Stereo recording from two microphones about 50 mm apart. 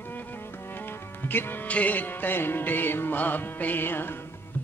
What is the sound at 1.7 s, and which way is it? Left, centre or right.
Music, left.